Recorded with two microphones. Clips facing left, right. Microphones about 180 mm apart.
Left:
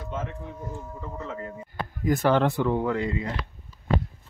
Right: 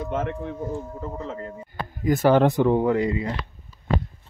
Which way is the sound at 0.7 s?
35° right (ahead or behind).